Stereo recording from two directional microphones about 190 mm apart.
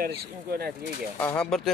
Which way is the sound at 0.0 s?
55° right (ahead or behind).